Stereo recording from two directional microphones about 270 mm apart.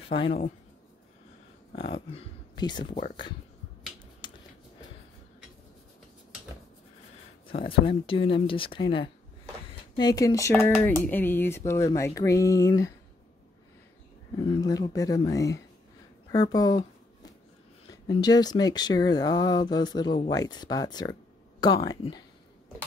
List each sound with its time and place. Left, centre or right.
0.1 s speech: left
1.9 s speech: centre
7.6 s speech: centre
14.4 s speech: centre
16.3 s a sound: centre
18.0 s speech: centre